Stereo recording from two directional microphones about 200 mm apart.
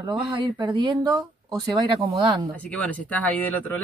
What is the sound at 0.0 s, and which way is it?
Speech, 20° right (ahead or behind).